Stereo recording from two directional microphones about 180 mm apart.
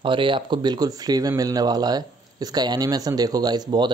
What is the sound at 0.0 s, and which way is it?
Speech, 30° right (ahead or behind).